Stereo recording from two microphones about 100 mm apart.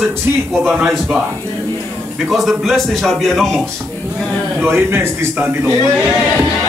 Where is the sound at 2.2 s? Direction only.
Centre (ahead or behind).